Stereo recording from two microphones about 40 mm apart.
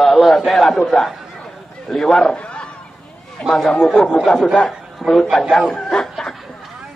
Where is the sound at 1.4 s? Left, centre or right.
Centre.